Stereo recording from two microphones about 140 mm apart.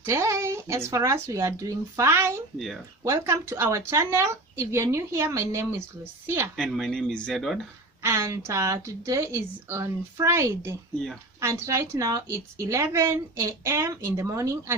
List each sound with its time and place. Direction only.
0.0 s speech: 20° right (ahead or behind)
6.5 s speech: centre (ahead or behind)
8.0 s speech: 20° right (ahead or behind)